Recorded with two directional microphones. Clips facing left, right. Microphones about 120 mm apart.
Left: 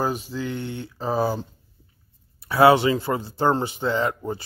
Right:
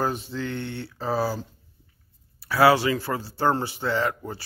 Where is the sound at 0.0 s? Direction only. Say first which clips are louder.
Left 1 dB; 10° left (ahead or behind).